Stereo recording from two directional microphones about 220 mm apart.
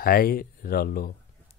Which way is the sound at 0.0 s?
40° left (ahead or behind).